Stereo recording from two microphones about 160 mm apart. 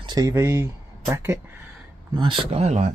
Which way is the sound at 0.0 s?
25° right (ahead or behind).